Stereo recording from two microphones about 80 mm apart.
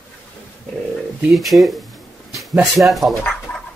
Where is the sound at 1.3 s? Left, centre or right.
Centre.